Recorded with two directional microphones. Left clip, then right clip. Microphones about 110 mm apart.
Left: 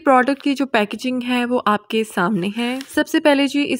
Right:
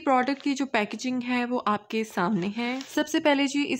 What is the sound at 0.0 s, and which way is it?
Speech, 55° left (ahead or behind).